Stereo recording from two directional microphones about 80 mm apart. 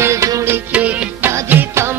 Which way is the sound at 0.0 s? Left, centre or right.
Right.